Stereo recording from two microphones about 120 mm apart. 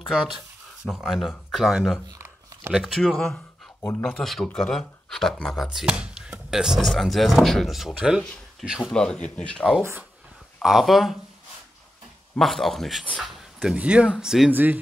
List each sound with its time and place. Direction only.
0.8 s speech: centre (ahead or behind)
2.0 s a sound: 25° right (ahead or behind)
2.7 s speech: centre (ahead or behind)
8.2 s a sound: 5° left (ahead or behind)
8.6 s speech: centre (ahead or behind)
12.4 s speech: centre (ahead or behind)
14.5 s speech: 15° right (ahead or behind)